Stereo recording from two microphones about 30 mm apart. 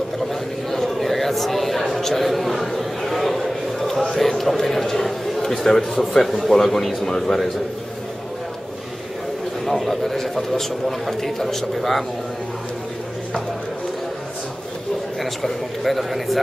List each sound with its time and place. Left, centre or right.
0.3 s a sound: centre
5.4 s a man's voice: centre
6.2 s a man's voice: centre
6.5 s a man's voice: centre
9.7 s a man's voice: centre
15.4 s a man's voice: centre